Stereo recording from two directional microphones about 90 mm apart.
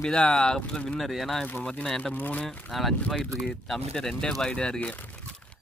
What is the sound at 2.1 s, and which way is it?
Speech, 20° left (ahead or behind).